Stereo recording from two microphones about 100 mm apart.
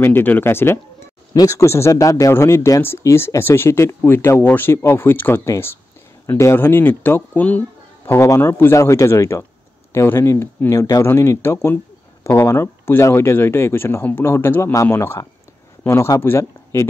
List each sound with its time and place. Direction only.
0.0 s speech: 20° left (ahead or behind)
1.3 s speech: 35° left (ahead or behind); by 7.6 s 15° left (ahead or behind)
8.1 s speech: 25° left (ahead or behind)